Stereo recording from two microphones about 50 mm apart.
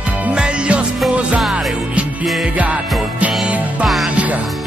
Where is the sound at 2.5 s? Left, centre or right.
Right.